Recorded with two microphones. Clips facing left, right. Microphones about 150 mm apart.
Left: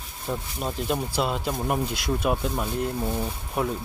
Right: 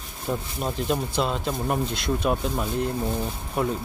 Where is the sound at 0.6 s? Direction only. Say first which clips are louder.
Right 1 dB; centre (ahead or behind).